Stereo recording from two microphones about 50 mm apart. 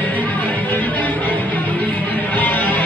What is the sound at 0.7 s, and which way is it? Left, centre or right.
Music, left.